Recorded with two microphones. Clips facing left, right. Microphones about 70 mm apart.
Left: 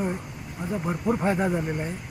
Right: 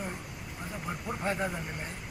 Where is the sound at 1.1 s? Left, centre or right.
Left.